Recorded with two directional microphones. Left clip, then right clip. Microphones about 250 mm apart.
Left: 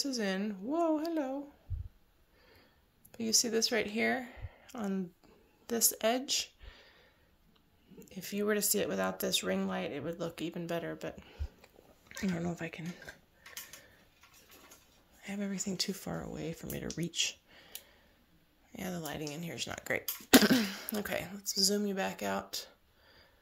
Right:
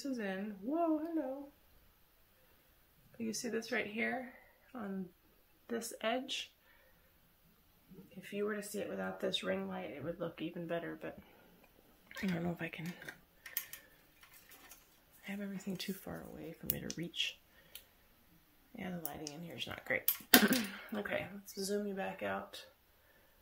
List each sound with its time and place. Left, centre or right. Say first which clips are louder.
0.0 s speech: left 6 dB; left
3.2 s speech: left 10 dB; left
8.2 s speech: left 6 dB; left
12.1 s speech: left 2 dB; centre
15.2 s speech: left 6 dB; left
18.8 s speech: left 6 dB; left
20.4 s speech: left 5 dB; left